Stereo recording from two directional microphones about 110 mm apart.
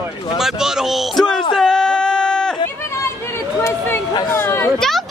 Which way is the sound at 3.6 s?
20° left (ahead or behind).